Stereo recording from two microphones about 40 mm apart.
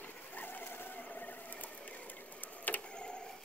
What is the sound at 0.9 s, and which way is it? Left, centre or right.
Vehicle, left.